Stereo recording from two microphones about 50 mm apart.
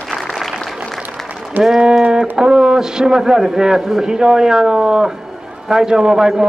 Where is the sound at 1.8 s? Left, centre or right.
Centre.